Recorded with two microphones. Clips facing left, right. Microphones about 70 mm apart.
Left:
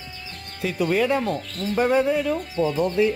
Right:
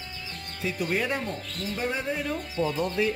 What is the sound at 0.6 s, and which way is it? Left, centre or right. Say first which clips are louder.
Speech: left 4 dB; left.